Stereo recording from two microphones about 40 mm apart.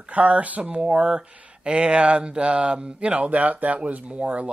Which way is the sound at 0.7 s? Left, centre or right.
Right.